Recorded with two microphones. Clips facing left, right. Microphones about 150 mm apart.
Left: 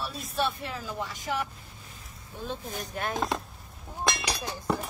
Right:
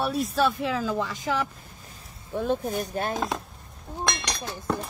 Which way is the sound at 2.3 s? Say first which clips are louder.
Right 11 dB; 55° right (ahead or behind).